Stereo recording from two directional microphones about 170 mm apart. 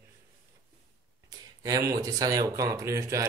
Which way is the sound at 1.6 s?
20° right (ahead or behind).